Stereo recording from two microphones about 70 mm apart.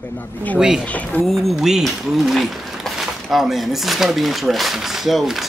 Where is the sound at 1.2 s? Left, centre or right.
Centre.